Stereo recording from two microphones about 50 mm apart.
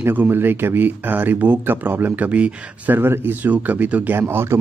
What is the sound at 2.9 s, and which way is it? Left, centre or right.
Speech, right.